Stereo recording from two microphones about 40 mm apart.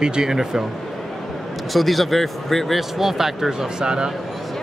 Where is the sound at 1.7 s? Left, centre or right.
Centre.